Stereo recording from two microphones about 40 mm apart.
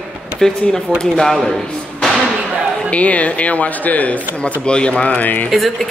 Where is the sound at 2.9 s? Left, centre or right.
Left.